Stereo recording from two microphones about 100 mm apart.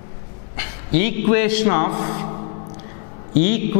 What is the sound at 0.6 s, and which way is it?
A man's voice, 10° left (ahead or behind).